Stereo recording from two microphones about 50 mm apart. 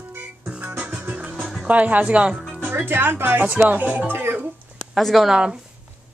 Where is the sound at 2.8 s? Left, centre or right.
Right.